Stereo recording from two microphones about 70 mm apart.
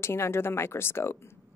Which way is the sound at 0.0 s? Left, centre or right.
Left.